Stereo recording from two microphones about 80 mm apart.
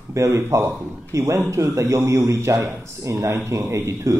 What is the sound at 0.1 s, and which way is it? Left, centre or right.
A man's voice, right.